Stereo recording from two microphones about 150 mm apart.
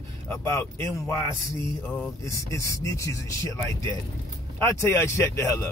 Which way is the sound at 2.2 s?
20° left (ahead or behind).